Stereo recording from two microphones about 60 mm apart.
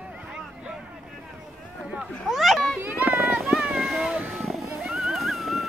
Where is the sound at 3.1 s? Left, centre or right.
Centre.